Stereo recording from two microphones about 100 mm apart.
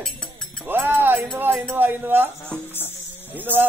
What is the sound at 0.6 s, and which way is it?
Music, 20° right (ahead or behind).